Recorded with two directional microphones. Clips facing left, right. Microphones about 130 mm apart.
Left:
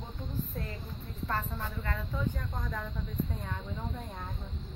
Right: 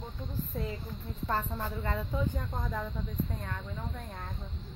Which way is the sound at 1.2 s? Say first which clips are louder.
Right 2 dB; 25° right (ahead or behind).